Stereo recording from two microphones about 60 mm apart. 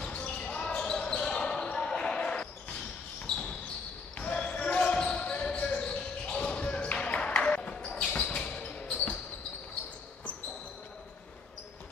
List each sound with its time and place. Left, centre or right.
0.2 s basketball bounce: centre
4.2 s basketball bounce: centre